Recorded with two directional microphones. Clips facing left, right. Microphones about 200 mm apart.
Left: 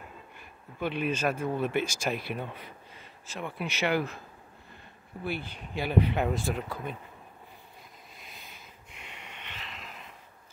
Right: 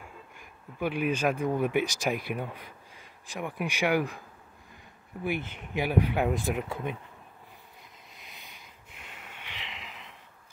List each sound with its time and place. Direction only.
0.4 s speech: 10° right (ahead or behind)
5.2 s speech: 20° right (ahead or behind)
9.0 s a sound: centre (ahead or behind)